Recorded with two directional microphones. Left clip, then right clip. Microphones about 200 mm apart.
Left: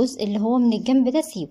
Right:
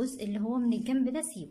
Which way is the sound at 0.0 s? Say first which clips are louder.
Left 12 dB; 25° left (ahead or behind).